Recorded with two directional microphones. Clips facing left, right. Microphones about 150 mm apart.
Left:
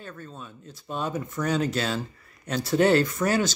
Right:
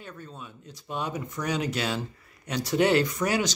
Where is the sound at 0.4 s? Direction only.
15° right (ahead or behind).